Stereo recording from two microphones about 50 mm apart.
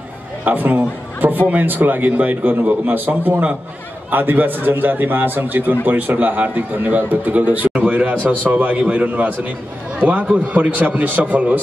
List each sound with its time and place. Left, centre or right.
0.5 s a man's voice: right